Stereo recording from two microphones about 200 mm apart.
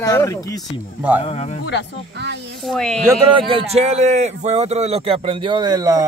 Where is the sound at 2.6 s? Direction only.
Centre (ahead or behind).